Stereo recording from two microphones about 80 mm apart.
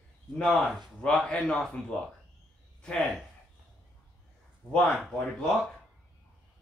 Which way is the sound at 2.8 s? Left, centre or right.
Centre.